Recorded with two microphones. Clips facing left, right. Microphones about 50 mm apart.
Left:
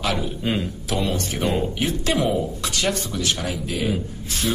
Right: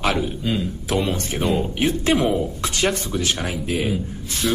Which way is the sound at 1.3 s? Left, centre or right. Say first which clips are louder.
Right 2 dB; centre.